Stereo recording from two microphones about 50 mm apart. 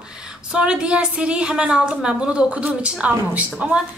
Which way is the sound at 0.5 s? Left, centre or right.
Centre.